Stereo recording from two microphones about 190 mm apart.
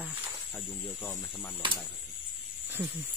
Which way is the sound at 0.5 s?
5° left (ahead or behind).